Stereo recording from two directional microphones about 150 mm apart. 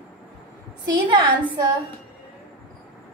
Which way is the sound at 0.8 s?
30° right (ahead or behind).